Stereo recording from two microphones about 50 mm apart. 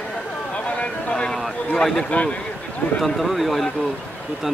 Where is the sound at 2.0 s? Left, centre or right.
Left.